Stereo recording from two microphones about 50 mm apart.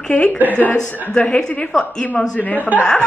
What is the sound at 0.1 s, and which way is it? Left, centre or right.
A woman's voice, left.